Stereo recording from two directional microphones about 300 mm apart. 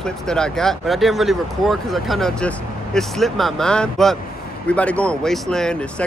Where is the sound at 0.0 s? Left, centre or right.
Centre.